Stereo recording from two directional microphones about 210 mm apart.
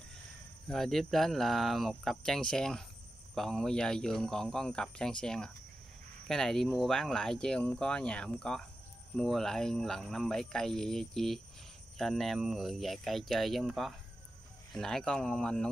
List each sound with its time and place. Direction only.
0.7 s speech: centre (ahead or behind)